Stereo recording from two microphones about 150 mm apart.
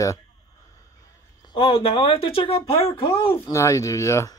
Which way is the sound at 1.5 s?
40° left (ahead or behind).